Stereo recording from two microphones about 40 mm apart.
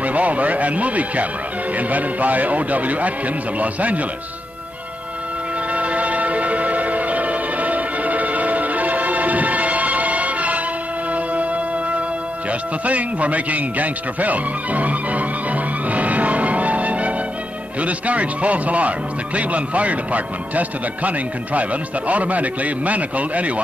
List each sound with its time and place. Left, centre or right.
0.0 s speech: right
5.7 s music: right
17.7 s speech: right